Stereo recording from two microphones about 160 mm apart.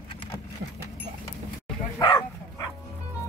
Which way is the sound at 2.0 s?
20° left (ahead or behind).